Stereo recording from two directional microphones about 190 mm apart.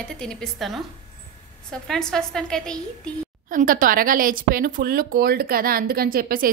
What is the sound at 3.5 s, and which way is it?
Speech, 45° right (ahead or behind).